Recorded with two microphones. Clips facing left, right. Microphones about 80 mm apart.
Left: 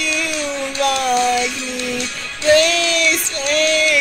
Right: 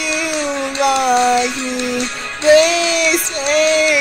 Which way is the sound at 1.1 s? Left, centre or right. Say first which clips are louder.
Right 3 dB; right.